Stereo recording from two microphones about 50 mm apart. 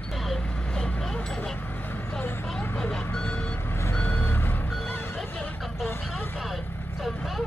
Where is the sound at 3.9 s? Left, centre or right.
Left.